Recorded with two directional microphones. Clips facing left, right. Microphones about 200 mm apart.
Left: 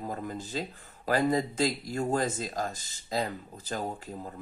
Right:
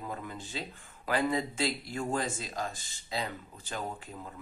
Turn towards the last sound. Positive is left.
turn(degrees=40)  # may be behind; listen again after turning